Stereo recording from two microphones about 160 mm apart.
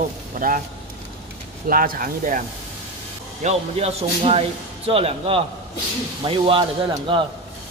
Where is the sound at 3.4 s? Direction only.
40° right (ahead or behind).